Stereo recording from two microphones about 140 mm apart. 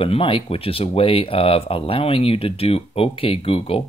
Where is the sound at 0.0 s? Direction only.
40° left (ahead or behind).